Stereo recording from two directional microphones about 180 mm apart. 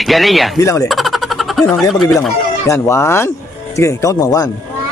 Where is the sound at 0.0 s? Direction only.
Centre (ahead or behind).